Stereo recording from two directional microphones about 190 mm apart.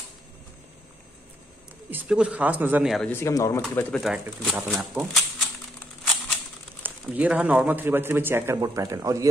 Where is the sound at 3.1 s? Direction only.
15° left (ahead or behind).